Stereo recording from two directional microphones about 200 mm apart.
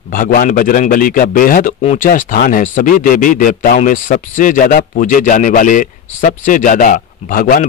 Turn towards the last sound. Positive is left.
turn(degrees=45)  # may be behind; listen again after turning